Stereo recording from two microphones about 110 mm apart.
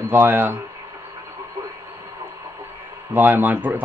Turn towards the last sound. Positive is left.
turn(degrees=-15)  # may be behind; listen again after turning